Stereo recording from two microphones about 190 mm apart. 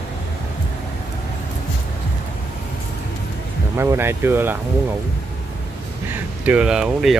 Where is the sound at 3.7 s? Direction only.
10° right (ahead or behind).